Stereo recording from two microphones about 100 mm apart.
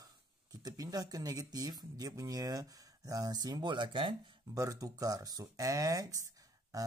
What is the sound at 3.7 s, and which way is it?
Speech, 55° right (ahead or behind).